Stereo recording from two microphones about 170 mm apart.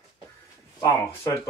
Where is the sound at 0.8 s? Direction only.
20° left (ahead or behind).